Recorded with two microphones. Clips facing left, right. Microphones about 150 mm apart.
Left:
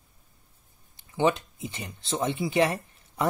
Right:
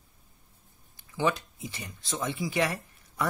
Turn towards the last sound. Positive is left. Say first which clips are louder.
# left 4 dB
turn(degrees=25)  # may be behind; listen again after turning